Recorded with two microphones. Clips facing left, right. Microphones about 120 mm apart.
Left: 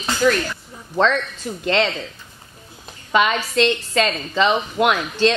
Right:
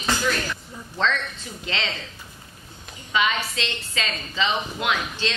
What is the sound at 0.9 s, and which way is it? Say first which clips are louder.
Speech: left 7 dB; 50° left (ahead or behind).